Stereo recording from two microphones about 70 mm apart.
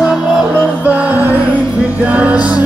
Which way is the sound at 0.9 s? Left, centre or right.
Right.